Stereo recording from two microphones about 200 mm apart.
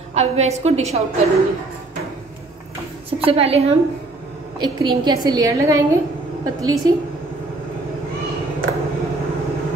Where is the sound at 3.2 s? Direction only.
30° right (ahead or behind).